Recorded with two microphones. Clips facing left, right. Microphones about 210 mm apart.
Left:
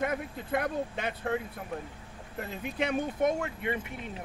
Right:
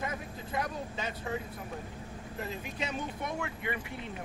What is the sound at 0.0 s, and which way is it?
Speech, 60° left (ahead or behind).